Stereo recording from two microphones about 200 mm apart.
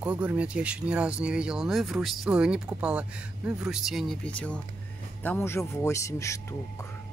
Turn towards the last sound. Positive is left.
turn(degrees=15)  # may be behind; listen again after turning